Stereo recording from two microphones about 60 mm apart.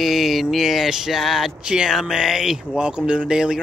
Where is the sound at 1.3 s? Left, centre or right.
Centre.